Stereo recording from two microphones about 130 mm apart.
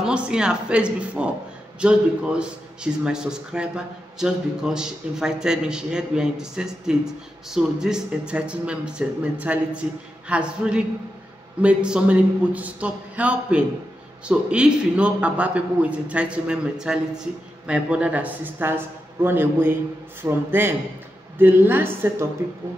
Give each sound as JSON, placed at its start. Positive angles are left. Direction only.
{"t": 0.0, "sound": "a man's voice", "side_deg": -5}